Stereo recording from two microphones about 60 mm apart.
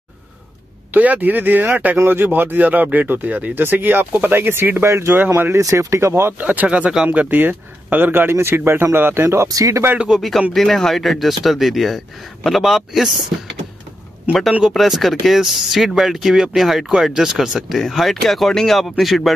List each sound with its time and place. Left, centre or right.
0.9 s speech: right
4.8 s speech: right
5.6 s speech: right
6.4 s speech: right
9.5 s speech: right
9.9 s speech: centre
10.5 s speech: centre
14.7 s speech: centre